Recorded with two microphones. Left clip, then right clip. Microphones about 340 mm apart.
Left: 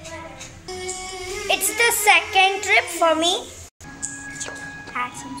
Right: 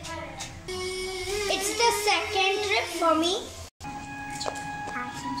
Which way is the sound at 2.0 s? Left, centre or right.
Left.